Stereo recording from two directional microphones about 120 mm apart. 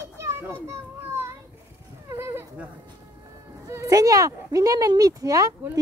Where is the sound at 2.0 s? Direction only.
20° right (ahead or behind).